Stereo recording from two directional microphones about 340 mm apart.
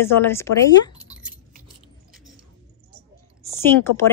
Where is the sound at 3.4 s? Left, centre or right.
Centre.